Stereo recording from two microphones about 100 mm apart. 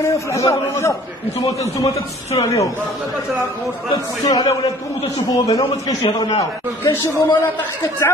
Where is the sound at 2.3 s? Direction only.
50° left (ahead or behind).